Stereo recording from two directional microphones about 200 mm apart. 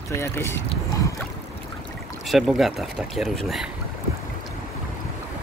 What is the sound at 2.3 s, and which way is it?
Speech, centre (ahead or behind).